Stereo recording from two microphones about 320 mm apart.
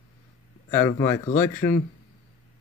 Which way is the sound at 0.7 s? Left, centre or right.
Centre.